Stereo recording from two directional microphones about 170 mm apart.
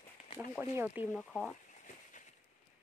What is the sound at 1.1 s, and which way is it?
Speech, 5° left (ahead or behind).